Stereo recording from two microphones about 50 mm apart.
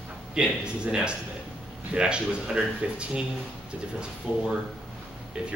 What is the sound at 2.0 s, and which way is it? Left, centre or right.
Speech, centre.